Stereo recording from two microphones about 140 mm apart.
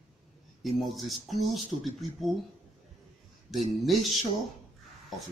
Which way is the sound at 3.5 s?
Centre (ahead or behind).